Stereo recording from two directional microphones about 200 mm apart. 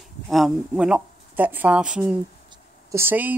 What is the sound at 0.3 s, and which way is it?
A woman's voice, centre (ahead or behind).